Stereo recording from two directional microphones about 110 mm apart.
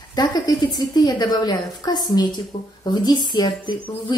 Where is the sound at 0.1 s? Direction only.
35° left (ahead or behind).